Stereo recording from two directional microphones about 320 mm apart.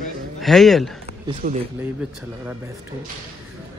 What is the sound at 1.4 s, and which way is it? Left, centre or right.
Speech, right.